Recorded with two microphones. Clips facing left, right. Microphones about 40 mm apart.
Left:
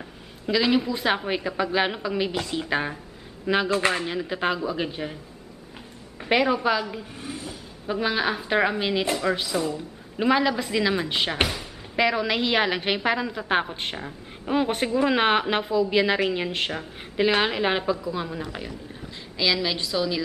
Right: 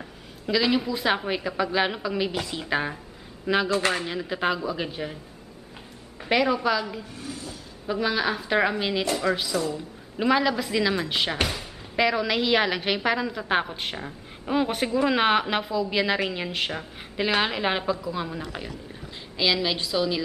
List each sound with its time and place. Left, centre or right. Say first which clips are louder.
0.5 s a woman's voice: left 1 dB; centre
6.2 s a woman's voice: left 1 dB; centre
7.2 s a sound: left 1 dB; left
7.8 s a woman's voice: even; centre